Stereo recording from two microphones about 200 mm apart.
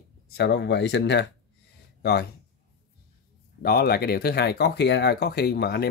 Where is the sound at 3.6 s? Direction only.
50° left (ahead or behind).